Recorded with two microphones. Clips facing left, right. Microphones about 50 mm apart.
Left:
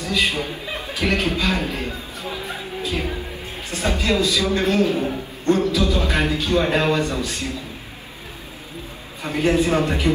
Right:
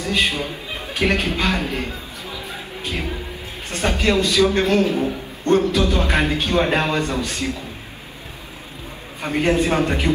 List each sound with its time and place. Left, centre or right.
0.0 s a man's voice: right
2.2 s music: left
2.8 s music: right
3.7 s a man's voice: right
9.2 s a man's voice: right